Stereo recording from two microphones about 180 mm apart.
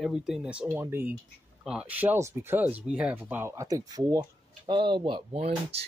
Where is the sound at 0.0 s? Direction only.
5° right (ahead or behind).